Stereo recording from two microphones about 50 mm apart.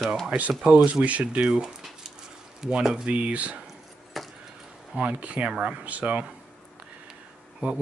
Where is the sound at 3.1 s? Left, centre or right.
Right.